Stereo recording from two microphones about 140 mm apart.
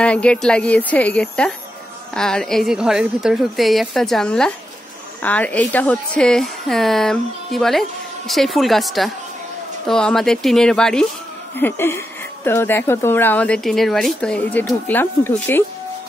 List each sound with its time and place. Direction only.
0.0 s a woman's voice: 10° left (ahead or behind)
11.5 s speech: 15° left (ahead or behind)